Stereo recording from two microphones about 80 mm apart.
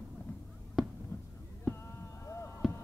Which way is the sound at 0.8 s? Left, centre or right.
Centre.